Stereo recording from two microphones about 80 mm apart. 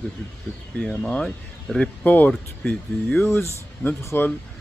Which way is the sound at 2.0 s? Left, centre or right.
Centre.